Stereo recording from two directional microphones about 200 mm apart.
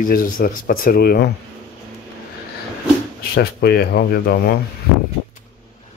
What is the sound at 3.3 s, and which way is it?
Speech, 50° left (ahead or behind).